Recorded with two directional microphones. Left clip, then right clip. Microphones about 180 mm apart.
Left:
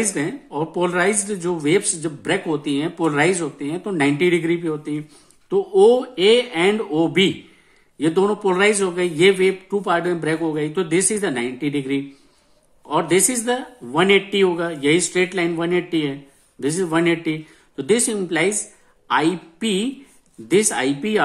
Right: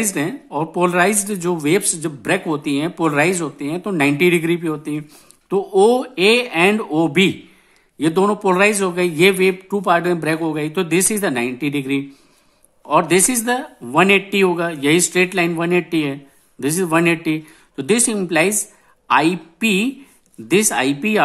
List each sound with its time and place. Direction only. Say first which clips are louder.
0.0 s speech: right 1 dB; 40° right (ahead or behind)